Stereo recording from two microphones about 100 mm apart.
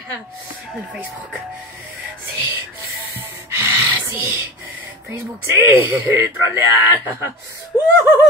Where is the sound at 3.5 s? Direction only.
25° right (ahead or behind).